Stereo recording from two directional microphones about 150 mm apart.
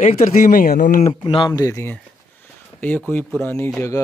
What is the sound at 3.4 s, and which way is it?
Speech, 15° left (ahead or behind).